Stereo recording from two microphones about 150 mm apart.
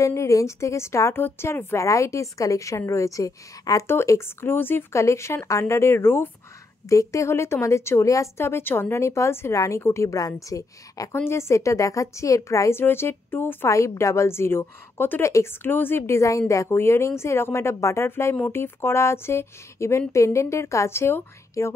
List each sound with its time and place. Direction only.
0.0 s a woman's voice: 20° left (ahead or behind)